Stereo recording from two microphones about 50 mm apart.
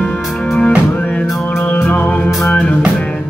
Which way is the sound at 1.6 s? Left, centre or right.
Left.